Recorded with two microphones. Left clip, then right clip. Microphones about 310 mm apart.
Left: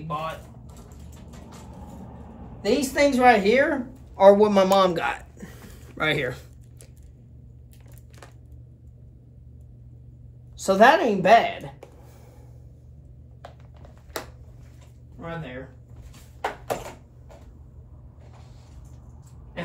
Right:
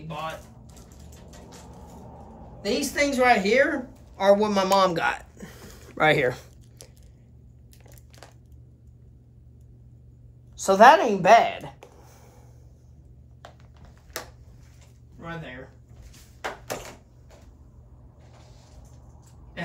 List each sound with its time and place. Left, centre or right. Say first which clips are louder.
2.6 s a woman's voice: left 4 dB; centre; by 6.4 s right
10.6 s a woman's voice: right 2 dB; centre
16.1 s a sound: left 4 dB; centre